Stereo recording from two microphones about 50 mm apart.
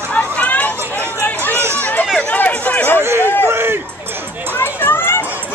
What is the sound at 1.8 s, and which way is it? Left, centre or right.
Chatter, left.